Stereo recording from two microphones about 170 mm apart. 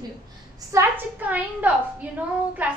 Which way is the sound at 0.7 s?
15° right (ahead or behind).